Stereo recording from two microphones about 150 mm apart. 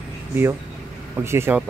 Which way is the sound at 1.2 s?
15° right (ahead or behind).